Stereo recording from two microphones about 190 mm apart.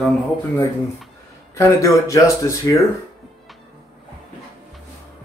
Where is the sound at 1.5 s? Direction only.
15° left (ahead or behind).